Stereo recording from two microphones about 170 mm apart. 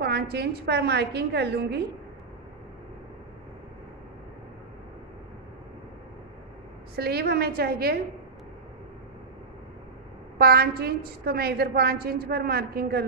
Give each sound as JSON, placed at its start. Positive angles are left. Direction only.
{"t": 0.0, "sound": "a woman's voice", "side_deg": -70}
{"t": 7.0, "sound": "a woman's voice", "side_deg": -70}
{"t": 10.4, "sound": "a woman's voice", "side_deg": -65}